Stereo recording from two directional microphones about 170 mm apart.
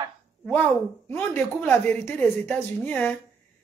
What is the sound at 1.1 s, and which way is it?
Speech, 10° left (ahead or behind).